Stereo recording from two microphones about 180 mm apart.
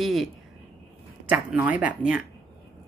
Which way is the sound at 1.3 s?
10° right (ahead or behind).